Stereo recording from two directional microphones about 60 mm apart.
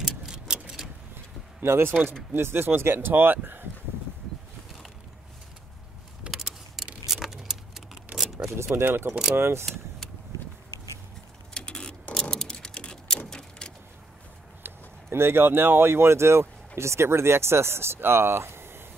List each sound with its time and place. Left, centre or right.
0.0 s tick-tock: centre
1.1 s a sound: right
2.3 s speech: right
6.3 s a sound: centre
7.1 s vehicle: centre
8.2 s shuffling cards: centre
8.7 s speech: right
11.5 s clock: centre
12.2 s a sound: centre
14.6 s speech: right